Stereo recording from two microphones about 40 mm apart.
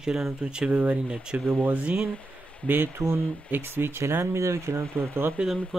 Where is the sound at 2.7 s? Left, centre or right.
Right.